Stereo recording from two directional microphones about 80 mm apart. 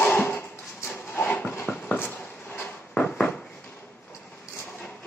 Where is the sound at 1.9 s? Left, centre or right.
Left.